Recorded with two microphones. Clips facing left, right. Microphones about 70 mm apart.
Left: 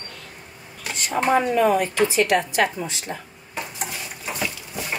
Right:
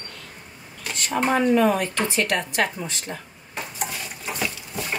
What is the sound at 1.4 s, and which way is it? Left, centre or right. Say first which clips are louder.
Speech: even; left.